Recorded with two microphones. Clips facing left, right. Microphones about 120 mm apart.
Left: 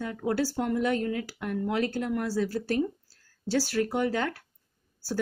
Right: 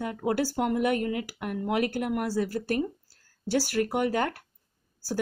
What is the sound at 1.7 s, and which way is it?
Speech, 65° right (ahead or behind).